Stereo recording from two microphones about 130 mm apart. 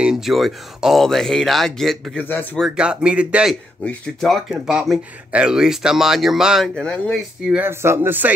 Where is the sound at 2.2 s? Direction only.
15° left (ahead or behind).